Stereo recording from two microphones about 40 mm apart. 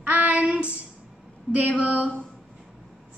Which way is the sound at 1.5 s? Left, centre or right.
Right.